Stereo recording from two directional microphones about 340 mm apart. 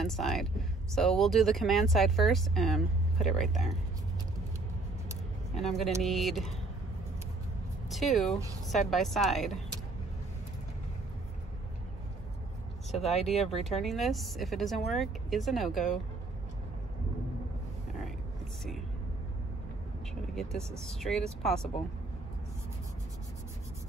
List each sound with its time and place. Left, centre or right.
0.0 s speech: centre
5.6 s speech: centre
7.9 s speech: centre
12.9 s speech: centre
13.6 s speech: centre
20.3 s speech: centre